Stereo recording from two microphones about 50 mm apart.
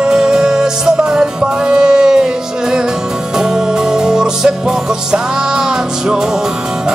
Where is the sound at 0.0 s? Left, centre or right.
Centre.